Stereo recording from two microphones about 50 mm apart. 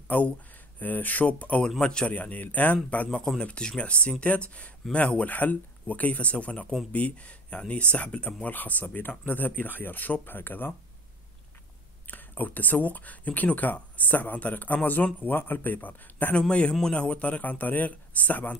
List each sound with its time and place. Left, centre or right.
0.1 s speech: left
1.8 s a man's voice: centre
2.0 s speech: left
3.4 s speech: centre
8.5 s speech: left
12.1 s speech: left
16.3 s speech: centre